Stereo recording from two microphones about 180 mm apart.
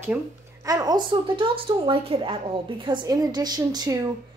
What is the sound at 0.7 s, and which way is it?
A woman's voice, 20° right (ahead or behind).